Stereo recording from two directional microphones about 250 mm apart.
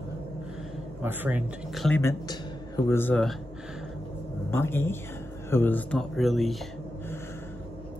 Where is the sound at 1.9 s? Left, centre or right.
Centre.